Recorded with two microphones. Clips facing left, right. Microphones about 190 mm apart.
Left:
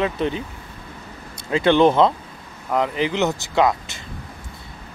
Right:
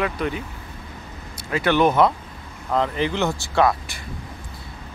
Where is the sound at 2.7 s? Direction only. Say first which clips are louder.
Left 1 dB; 15° left (ahead or behind).